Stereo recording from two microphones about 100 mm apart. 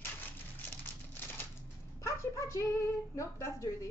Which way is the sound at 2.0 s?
30° left (ahead or behind).